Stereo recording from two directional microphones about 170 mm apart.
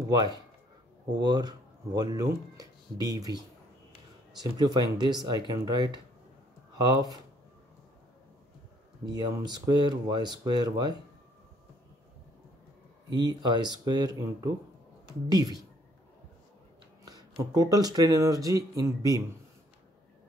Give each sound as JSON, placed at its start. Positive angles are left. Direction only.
{"t": 1.2, "sound": "speech", "side_deg": -25}
{"t": 9.0, "sound": "speech", "side_deg": -25}
{"t": 13.1, "sound": "speech", "side_deg": -25}
{"t": 17.0, "sound": "speech", "side_deg": -20}